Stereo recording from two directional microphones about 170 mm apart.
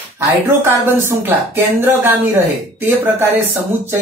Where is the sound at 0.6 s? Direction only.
15° right (ahead or behind).